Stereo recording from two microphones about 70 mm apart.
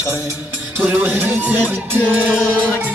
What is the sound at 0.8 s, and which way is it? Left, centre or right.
Music, right.